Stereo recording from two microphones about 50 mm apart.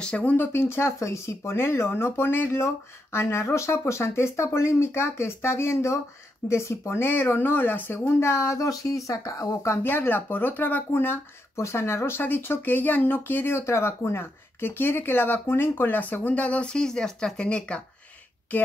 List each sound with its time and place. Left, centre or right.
0.0 s speech: left
0.4 s speech: left
0.9 s speech: left
2.5 s speech: left
9.8 s speech: left
11.5 s speech: left
12.7 s speech: left